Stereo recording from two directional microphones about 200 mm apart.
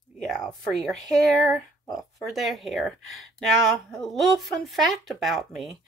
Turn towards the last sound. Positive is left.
turn(degrees=0)  # may be behind; listen again after turning